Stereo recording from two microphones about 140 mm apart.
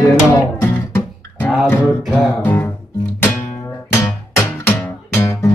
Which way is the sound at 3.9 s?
20° left (ahead or behind).